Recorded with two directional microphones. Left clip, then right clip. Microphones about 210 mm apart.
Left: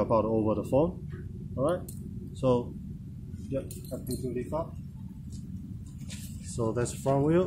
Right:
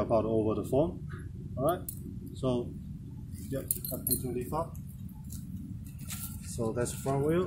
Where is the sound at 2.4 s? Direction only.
40° left (ahead or behind).